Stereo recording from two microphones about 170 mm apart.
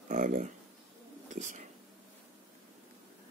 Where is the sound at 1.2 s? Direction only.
45° right (ahead or behind).